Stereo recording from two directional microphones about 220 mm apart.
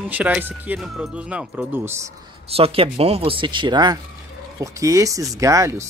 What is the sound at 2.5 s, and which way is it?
Speech, 25° right (ahead or behind).